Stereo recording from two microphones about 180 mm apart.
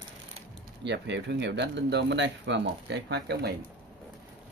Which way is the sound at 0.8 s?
75° right (ahead or behind).